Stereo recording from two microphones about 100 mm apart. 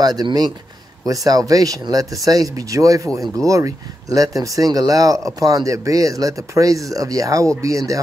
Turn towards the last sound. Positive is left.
turn(degrees=-35)  # may be behind; listen again after turning